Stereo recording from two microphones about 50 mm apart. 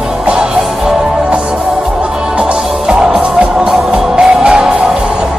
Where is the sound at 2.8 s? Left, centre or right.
Centre.